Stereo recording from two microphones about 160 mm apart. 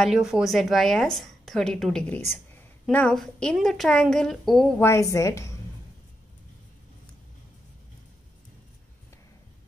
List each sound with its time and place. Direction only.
0.0 s a woman's voice: centre (ahead or behind)
4.8 s a woman's voice: 20° left (ahead or behind)